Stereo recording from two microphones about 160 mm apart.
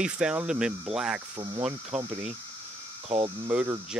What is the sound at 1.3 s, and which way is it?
Speech, 30° right (ahead or behind).